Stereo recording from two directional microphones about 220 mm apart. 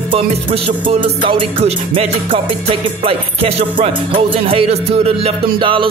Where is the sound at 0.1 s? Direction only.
25° right (ahead or behind).